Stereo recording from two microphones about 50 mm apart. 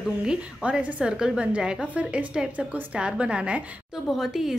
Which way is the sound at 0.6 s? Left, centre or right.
Right.